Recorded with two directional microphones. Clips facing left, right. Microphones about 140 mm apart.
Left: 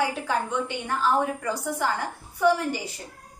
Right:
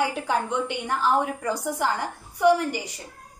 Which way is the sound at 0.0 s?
15° right (ahead or behind).